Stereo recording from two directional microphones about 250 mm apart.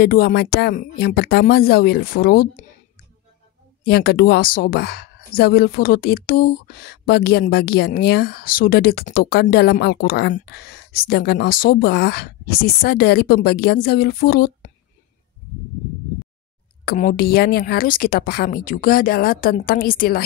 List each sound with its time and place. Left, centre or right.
0.0 s speech: left
3.8 s speech: left
16.8 s speech: left